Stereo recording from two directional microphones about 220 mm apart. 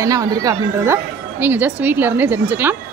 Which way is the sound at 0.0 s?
15° right (ahead or behind).